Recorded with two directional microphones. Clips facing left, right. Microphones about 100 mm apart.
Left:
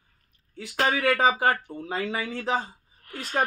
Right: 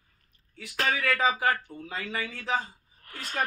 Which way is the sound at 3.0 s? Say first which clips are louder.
Left 6 dB; 10° left (ahead or behind).